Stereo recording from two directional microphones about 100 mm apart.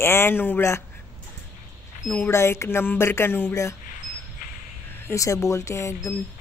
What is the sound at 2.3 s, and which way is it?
Speech, 25° left (ahead or behind).